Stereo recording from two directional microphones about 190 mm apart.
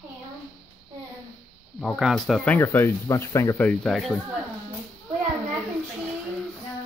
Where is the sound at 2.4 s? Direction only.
15° left (ahead or behind).